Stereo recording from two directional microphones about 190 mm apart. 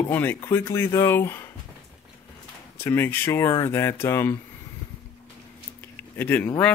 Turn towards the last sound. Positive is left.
turn(degrees=10)  # may be behind; listen again after turning